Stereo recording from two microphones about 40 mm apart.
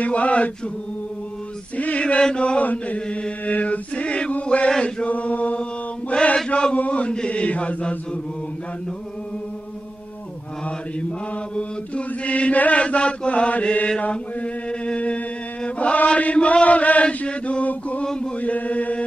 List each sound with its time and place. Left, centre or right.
0.0 s chant: left
1.8 s chant: left
2.6 s chant: left
6.3 s chant: left
6.7 s chant: left
11.5 s chant: left
12.8 s chant: left
18.0 s chant: centre
18.4 s chant: left